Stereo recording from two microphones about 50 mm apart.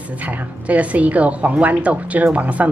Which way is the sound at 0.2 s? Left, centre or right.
Right.